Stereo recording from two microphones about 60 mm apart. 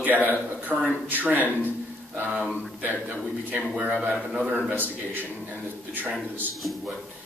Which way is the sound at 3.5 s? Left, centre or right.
Right.